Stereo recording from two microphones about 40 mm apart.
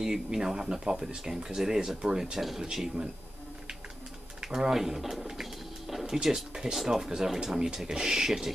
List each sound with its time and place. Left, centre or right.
0.0 s speech: centre
2.0 s speech: right
2.3 s speech: centre
4.4 s speech: centre
5.2 s a sound: centre
6.2 s speech: centre